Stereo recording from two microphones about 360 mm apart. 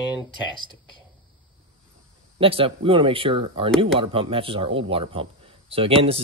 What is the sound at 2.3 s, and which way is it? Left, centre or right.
Speech, centre.